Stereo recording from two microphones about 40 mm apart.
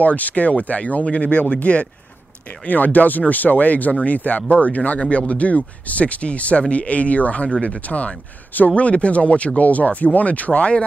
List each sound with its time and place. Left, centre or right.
0.0 s speech: left
2.6 s speech: left